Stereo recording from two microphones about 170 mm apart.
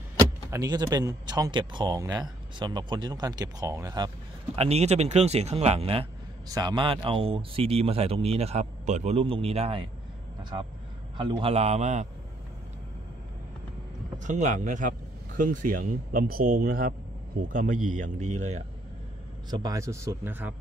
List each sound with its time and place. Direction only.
0.2 s speech: 20° right (ahead or behind)
4.6 s speech: 40° right (ahead or behind)
11.1 s speech: 30° right (ahead or behind)
14.1 s speech: 45° right (ahead or behind)
19.5 s speech: 20° right (ahead or behind)